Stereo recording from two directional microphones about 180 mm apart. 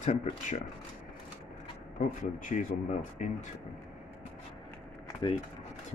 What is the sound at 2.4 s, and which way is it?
Speech, 45° left (ahead or behind).